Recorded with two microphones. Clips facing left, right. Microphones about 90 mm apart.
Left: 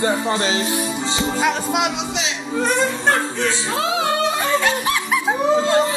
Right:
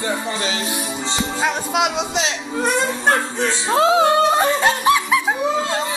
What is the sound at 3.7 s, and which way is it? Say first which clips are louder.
Speech: right 9 dB; 35° right (ahead or behind).